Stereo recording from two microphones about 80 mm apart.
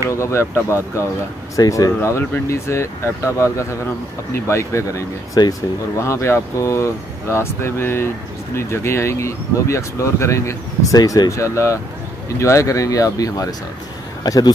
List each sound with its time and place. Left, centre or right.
0.2 s speech: left
1.6 s speech: left
2.0 s speech: left
14.2 s speech: left